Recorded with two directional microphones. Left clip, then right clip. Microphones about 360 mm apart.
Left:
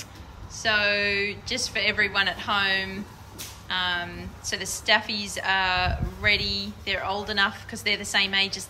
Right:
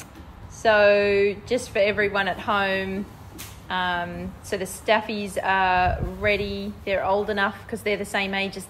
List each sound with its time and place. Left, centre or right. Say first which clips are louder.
0.6 s a woman's voice: right 6 dB; centre